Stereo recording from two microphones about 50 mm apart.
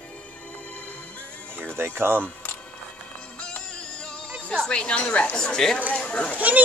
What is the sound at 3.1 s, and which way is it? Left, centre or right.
Music, left.